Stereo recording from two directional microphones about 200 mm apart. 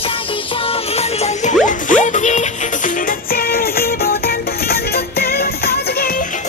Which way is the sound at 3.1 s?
50° left (ahead or behind).